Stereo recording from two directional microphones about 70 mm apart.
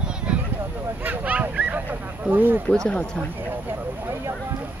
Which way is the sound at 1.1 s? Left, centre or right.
Right.